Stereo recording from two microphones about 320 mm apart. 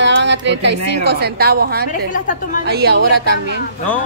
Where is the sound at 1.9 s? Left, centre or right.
Left.